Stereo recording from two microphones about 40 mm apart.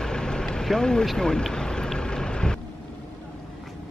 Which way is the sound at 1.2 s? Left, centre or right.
Centre.